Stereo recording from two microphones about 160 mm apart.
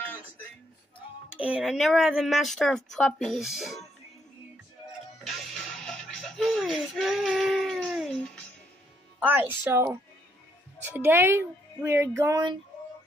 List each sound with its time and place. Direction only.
1.4 s speech: 5° right (ahead or behind)
5.2 s music: centre (ahead or behind)
9.2 s speech: 10° right (ahead or behind)
10.9 s speech: 15° right (ahead or behind)